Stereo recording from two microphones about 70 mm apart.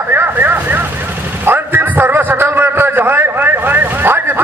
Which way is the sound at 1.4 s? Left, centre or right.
Right.